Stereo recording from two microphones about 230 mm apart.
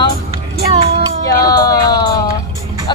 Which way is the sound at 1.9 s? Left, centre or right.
Centre.